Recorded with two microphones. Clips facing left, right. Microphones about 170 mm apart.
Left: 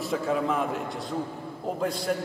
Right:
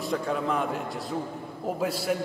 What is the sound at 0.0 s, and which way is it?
A man's voice, centre (ahead or behind).